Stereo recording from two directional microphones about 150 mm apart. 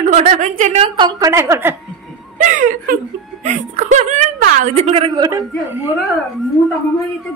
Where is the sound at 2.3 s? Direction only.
55° right (ahead or behind).